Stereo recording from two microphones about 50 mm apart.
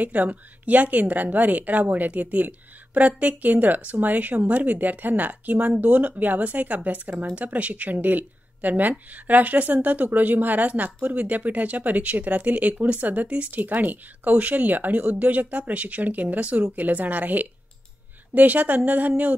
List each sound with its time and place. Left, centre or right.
0.0 s speech: right